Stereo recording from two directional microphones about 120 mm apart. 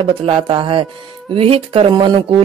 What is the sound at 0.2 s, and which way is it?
Speech, 45° right (ahead or behind).